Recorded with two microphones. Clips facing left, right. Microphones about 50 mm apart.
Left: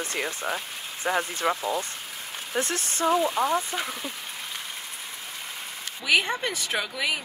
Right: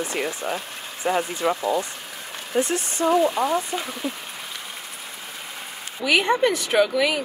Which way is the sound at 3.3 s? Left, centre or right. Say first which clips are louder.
Right 2 dB; centre.